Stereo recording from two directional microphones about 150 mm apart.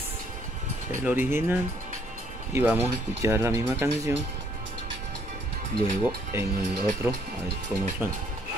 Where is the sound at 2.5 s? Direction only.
15° right (ahead or behind).